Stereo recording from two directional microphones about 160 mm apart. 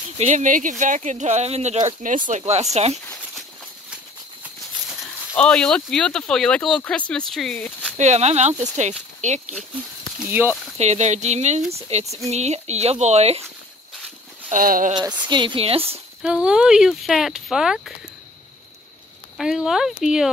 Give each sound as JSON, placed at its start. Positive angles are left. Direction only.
{"t": 0.2, "sound": "speech", "side_deg": -50}
{"t": 5.3, "sound": "speech", "side_deg": 5}
{"t": 8.0, "sound": "speech", "side_deg": -45}
{"t": 10.1, "sound": "speech", "side_deg": -10}
{"t": 10.8, "sound": "speech", "side_deg": -45}
{"t": 14.5, "sound": "speech", "side_deg": -60}
{"t": 15.1, "sound": "speech", "side_deg": -30}
{"t": 16.2, "sound": "speech", "side_deg": -5}
{"t": 19.3, "sound": "speech", "side_deg": -5}